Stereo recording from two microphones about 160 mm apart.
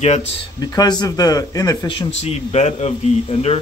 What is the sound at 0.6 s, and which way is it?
Speech, 25° left (ahead or behind).